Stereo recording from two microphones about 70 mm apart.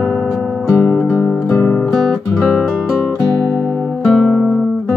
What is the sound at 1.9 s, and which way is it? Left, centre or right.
Music, centre.